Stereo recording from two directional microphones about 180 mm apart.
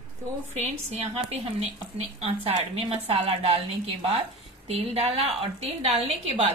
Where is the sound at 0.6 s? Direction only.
35° right (ahead or behind).